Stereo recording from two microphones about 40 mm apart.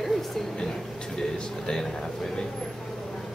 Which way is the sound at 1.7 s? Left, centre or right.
Centre.